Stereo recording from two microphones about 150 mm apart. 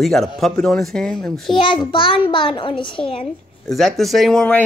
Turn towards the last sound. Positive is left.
turn(degrees=5)  # may be behind; listen again after turning